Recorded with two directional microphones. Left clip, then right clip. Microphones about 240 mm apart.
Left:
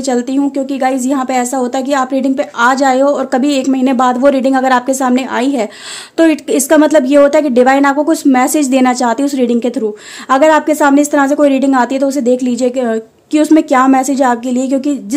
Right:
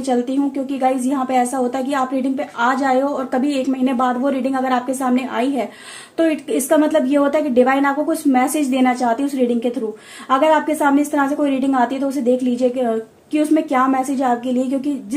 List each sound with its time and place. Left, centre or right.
0.8 s a woman's voice: left